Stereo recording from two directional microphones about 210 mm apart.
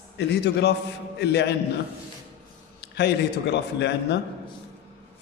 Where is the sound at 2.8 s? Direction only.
50° left (ahead or behind).